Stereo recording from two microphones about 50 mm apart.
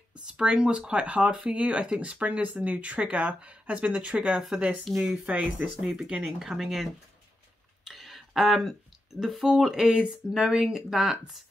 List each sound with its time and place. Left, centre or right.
0.2 s speech: centre
4.8 s speech: centre
5.3 s speech: right
5.9 s speech: centre
7.8 s a sound: centre
9.6 s speech: centre
9.8 s speech: centre